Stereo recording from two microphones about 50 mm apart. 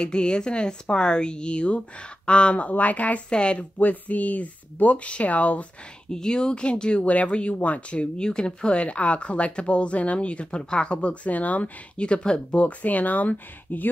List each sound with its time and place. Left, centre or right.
0.0 s speech: centre
3.3 s speech: left
3.8 s speech: left
6.1 s speech: centre; by 13.8 s left